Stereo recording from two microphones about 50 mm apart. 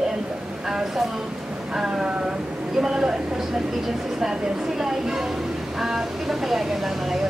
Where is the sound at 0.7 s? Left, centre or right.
Centre.